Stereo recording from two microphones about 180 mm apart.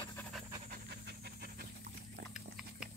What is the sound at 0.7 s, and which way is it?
Pant, 65° right (ahead or behind).